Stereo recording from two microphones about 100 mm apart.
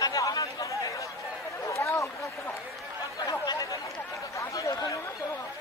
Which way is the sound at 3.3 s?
40° left (ahead or behind).